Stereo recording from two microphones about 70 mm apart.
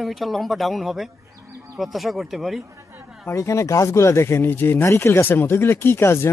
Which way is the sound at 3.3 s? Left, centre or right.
Left.